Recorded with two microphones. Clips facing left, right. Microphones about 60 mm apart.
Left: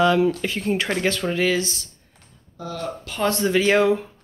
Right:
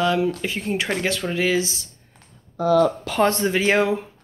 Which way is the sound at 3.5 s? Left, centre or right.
Centre.